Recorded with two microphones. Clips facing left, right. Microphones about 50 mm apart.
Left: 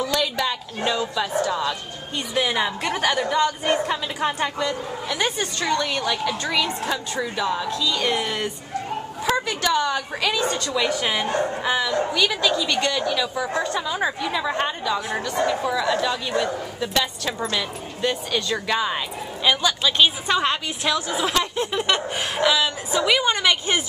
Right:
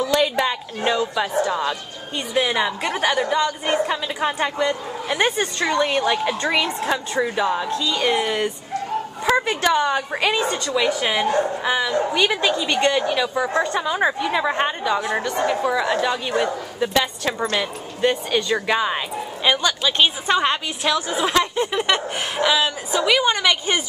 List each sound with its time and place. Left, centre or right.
0.1 s a woman's voice: right
2.1 s speech: centre
5.0 s a woman's voice: right
5.9 s a woman's voice: right; by 8.5 s centre
9.5 s a woman's voice: right
10.4 s speech: centre
12.1 s a woman's voice: right; by 23.8 s centre